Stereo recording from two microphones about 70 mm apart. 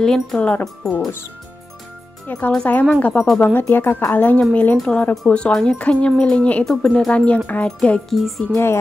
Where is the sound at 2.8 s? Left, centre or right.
Centre.